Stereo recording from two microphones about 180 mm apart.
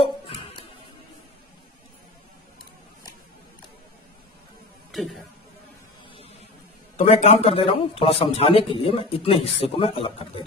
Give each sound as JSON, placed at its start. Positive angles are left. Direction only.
{"t": 0.0, "sound": "a sound", "side_deg": 30}
{"t": 4.9, "sound": "speech", "side_deg": 0}
{"t": 7.2, "sound": "a man's voice", "side_deg": 30}